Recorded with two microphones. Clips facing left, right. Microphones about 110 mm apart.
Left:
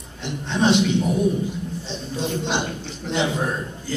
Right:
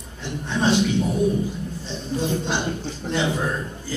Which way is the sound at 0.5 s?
20° left (ahead or behind).